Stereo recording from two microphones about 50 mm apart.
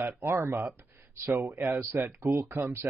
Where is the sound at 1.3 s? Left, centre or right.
Right.